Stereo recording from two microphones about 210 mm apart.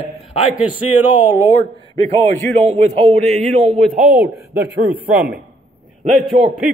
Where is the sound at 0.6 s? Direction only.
10° right (ahead or behind).